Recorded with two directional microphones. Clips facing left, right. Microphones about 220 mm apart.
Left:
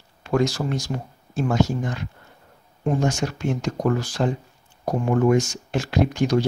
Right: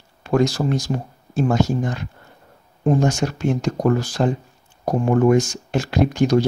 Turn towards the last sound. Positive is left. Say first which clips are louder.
# right 3 dB
turn(degrees=-40)  # may be behind; listen again after turning